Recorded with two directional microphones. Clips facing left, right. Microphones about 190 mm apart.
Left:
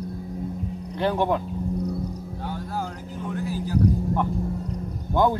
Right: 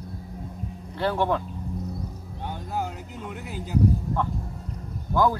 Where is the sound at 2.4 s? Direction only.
20° right (ahead or behind).